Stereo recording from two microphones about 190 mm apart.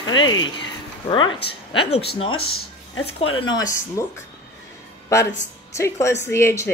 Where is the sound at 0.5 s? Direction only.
25° left (ahead or behind).